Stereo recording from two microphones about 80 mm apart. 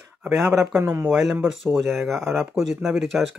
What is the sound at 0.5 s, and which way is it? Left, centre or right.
Speech, right.